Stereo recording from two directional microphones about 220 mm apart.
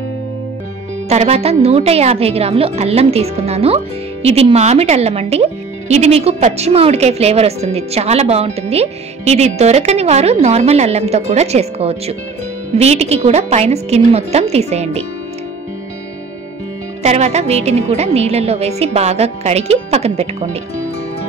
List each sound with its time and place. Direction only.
1.0 s a woman's voice: 30° right (ahead or behind)
17.0 s a woman's voice: 30° right (ahead or behind)